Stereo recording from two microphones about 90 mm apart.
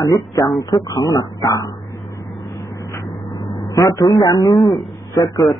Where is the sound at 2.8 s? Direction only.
35° left (ahead or behind).